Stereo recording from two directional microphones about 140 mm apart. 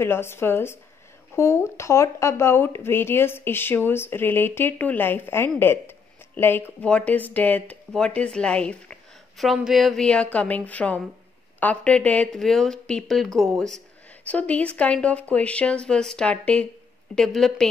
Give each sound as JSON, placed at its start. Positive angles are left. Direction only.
{"t": 0.0, "sound": "a woman's voice", "side_deg": 15}